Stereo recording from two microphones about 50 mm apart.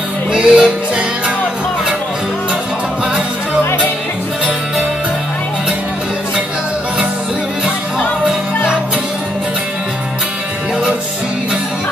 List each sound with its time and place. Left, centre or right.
0.3 s music: centre